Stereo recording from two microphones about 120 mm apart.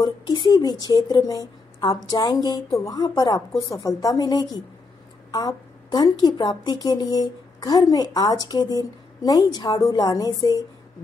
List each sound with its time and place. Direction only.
0.0 s a woman's voice: 40° left (ahead or behind)